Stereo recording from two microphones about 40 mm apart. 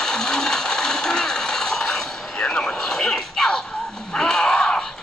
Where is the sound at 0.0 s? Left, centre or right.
Centre.